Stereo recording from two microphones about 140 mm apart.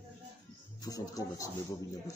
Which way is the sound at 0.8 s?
25° left (ahead or behind).